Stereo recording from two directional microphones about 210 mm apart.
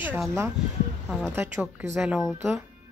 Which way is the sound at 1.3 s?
10° right (ahead or behind).